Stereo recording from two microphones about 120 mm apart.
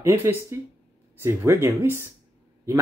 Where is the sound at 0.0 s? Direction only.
20° right (ahead or behind).